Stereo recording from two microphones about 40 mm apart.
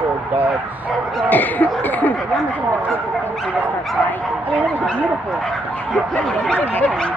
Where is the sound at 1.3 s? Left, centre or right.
Left.